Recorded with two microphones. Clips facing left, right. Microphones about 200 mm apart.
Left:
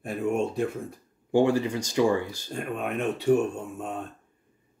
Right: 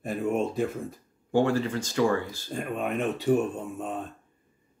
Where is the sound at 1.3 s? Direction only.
15° left (ahead or behind).